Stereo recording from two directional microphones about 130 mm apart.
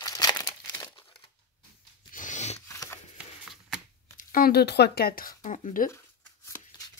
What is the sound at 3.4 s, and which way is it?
Shuffling cards, 5° right (ahead or behind).